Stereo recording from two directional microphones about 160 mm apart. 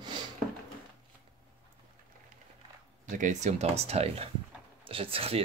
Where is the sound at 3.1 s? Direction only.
50° right (ahead or behind).